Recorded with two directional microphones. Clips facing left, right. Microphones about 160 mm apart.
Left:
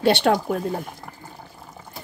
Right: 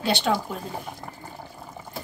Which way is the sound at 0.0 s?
60° left (ahead or behind).